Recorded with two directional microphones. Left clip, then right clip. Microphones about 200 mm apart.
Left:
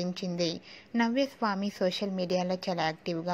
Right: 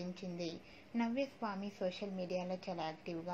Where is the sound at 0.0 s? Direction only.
40° left (ahead or behind).